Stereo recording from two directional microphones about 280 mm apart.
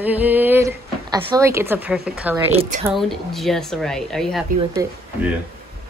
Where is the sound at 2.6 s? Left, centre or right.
Right.